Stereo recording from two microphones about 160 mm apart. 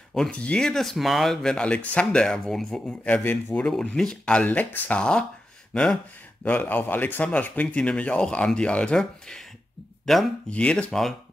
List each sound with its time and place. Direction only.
0.1 s speech: 5° left (ahead or behind)